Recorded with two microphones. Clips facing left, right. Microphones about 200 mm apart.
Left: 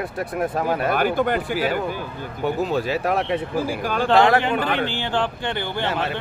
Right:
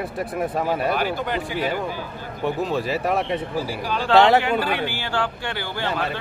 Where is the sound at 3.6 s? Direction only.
50° left (ahead or behind).